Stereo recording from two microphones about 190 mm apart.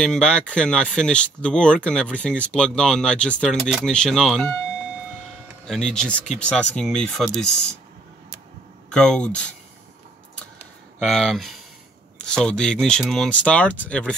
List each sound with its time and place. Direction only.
0.0 s speech: 5° left (ahead or behind)
5.7 s speech: 5° left (ahead or behind)
8.9 s speech: 5° left (ahead or behind)
11.0 s speech: centre (ahead or behind)